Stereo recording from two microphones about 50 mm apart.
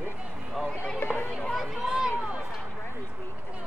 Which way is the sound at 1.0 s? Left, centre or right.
Left.